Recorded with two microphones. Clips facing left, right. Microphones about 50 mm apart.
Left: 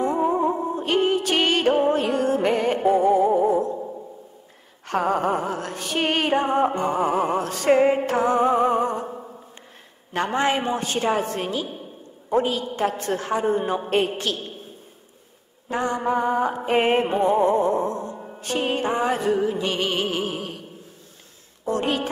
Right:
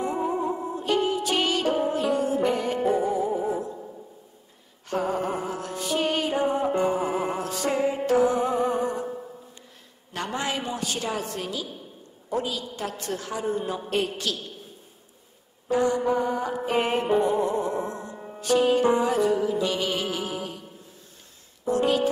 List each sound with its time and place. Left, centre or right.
0.0 s music: left
4.8 s music: left
9.1 s a sound: left
10.1 s a woman's voice: left
15.7 s music: left
17.8 s music: right
18.4 s music: left
21.6 s music: left